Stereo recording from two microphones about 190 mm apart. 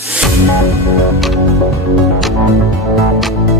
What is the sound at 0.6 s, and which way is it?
Music, 15° left (ahead or behind).